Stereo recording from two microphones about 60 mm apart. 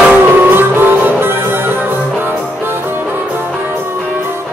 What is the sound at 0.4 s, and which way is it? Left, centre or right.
Music, right.